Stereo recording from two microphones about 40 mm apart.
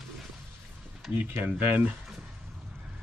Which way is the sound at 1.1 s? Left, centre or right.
Right.